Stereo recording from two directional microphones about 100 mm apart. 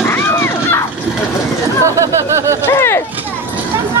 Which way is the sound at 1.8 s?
30° right (ahead or behind).